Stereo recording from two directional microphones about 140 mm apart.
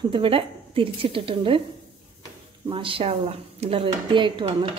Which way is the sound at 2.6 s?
40° right (ahead or behind).